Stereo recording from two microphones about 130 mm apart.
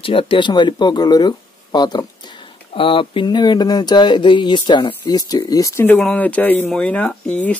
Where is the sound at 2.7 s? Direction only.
45° left (ahead or behind).